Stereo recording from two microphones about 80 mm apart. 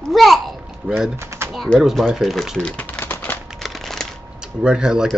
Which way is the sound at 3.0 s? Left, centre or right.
Left.